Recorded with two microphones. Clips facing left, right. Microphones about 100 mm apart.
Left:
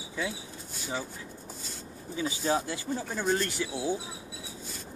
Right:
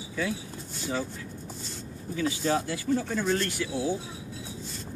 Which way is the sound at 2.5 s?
15° left (ahead or behind).